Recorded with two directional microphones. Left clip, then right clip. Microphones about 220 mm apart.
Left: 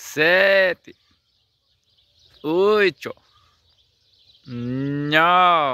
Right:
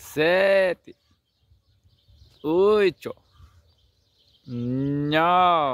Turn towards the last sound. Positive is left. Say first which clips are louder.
# left 3 dB
turn(degrees=0)  # may be behind; listen again after turning